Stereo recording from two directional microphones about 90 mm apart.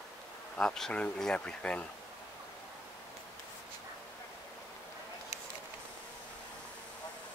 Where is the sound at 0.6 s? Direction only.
5° left (ahead or behind).